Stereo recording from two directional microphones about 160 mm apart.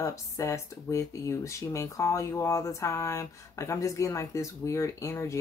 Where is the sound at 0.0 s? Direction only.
20° left (ahead or behind).